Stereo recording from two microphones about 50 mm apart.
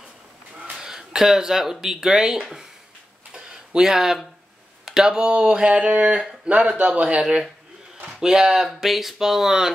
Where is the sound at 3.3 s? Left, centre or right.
Centre.